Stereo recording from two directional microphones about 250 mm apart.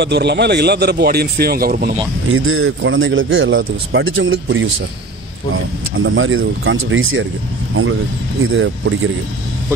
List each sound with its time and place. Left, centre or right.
0.0 s a man's voice: right
2.3 s speech: right
5.9 s speech: right
8.5 s speech: right